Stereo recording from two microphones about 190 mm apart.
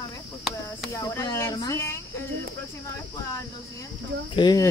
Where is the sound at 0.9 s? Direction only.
15° left (ahead or behind).